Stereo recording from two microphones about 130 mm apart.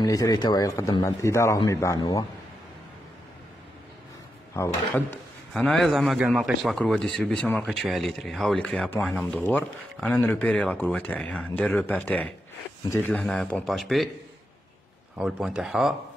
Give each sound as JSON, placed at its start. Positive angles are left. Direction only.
{"t": 0.0, "sound": "a man's voice", "side_deg": 30}
{"t": 4.9, "sound": "a man's voice", "side_deg": 5}
{"t": 13.1, "sound": "a man's voice", "side_deg": 5}
{"t": 15.1, "sound": "a man's voice", "side_deg": -5}